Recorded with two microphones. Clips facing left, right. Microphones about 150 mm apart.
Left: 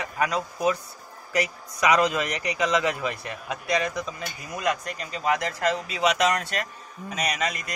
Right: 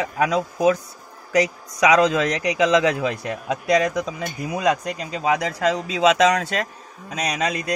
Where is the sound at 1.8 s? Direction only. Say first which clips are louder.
Right 5 dB; 90° right.